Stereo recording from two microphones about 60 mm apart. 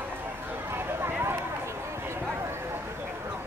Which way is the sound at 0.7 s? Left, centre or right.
Right.